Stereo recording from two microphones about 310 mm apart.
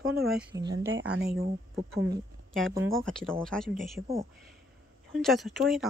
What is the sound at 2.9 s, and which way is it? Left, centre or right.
Speech, centre.